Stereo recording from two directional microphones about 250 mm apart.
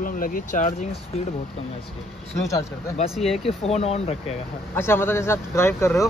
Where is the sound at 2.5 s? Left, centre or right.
Centre.